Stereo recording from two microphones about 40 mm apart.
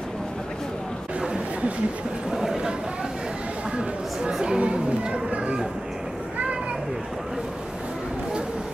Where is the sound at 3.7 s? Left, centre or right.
Centre.